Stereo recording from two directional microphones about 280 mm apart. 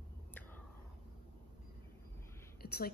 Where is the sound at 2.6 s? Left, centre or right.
Left.